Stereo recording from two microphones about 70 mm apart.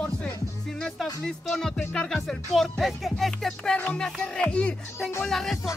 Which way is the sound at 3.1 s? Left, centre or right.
Centre.